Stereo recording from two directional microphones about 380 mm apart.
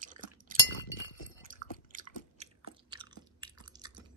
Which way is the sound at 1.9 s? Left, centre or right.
Centre.